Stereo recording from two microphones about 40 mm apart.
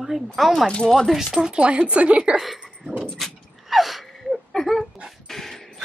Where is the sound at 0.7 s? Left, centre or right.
Left.